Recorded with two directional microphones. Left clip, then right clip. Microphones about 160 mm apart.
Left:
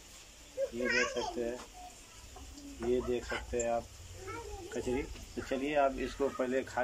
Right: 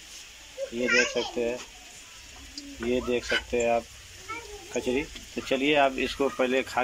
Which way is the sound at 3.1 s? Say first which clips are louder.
Right 9 dB; 20° right (ahead or behind).